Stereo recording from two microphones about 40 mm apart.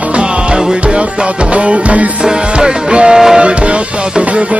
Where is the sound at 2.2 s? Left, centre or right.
Right.